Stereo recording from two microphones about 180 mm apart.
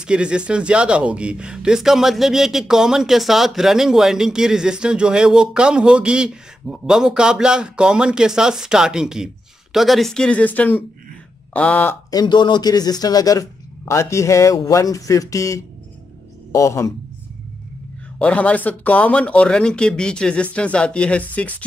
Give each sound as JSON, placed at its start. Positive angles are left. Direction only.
{"t": 0.0, "sound": "speech", "side_deg": -5}
{"t": 18.2, "sound": "speech", "side_deg": 5}